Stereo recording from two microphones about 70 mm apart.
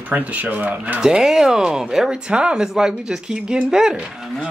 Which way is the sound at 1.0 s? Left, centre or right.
Centre.